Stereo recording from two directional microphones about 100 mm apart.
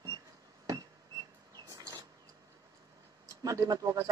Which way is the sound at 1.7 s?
40° right (ahead or behind).